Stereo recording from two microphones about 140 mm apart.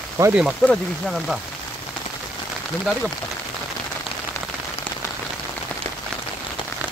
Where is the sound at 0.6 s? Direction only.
5° left (ahead or behind).